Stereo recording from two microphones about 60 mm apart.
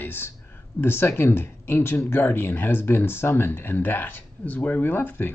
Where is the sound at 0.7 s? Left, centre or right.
Left.